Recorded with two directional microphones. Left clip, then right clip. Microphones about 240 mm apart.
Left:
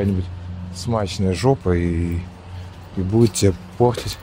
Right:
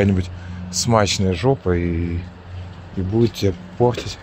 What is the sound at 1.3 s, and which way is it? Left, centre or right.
Speech, centre.